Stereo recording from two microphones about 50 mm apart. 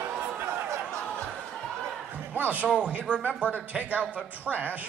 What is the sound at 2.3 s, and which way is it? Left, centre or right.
Speech, right.